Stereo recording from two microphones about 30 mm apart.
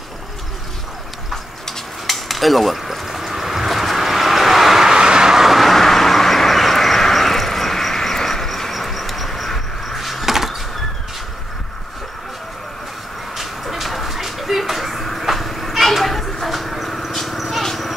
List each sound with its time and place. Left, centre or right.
2.0 s cutlery: centre
2.8 s vehicle: centre
4.9 s vehicle: right
5.3 s vehicle: centre
13.4 s vehicle: centre
14.7 s a sound: centre
15.2 s children playing: centre
16.4 s vehicle: centre
17.4 s vehicle: centre
17.6 s a sound: centre